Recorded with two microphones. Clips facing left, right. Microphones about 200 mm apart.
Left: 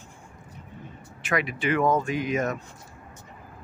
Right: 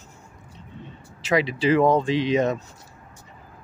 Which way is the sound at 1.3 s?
30° right (ahead or behind).